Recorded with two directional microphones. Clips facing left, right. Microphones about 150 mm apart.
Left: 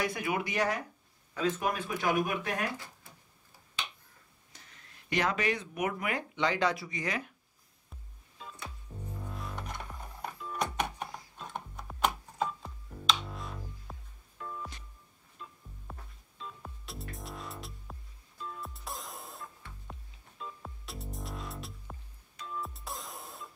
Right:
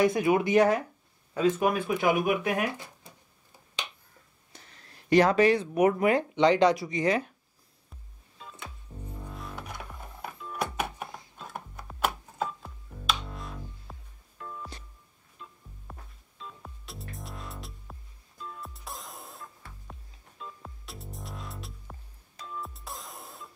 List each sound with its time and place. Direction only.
0.0 s speech: 25° right (ahead or behind)
1.7 s speech: 10° right (ahead or behind)
5.1 s speech: 35° right (ahead or behind)
8.4 s music: centre (ahead or behind)